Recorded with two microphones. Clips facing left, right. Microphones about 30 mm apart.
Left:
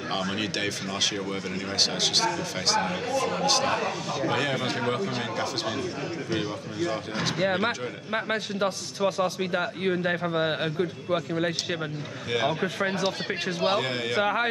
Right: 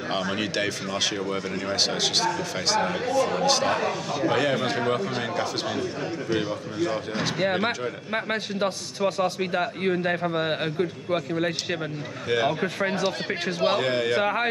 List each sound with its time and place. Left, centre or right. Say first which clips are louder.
0.1 s a man's voice: right 2 dB; centre